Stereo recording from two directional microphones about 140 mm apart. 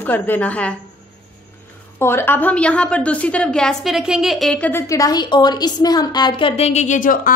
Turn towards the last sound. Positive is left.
turn(degrees=75)  # may be behind; listen again after turning